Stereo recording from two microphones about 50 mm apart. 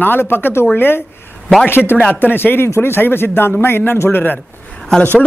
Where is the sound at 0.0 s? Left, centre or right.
Left.